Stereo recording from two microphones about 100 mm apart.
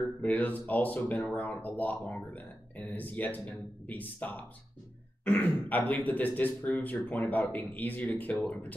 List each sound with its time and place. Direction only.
0.0 s speech: 15° left (ahead or behind)